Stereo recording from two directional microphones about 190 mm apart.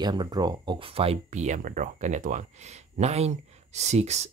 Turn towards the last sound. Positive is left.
turn(degrees=-35)  # may be behind; listen again after turning